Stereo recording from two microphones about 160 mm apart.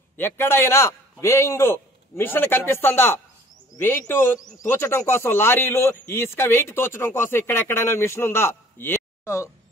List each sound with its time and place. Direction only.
0.2 s a man's voice: 15° left (ahead or behind)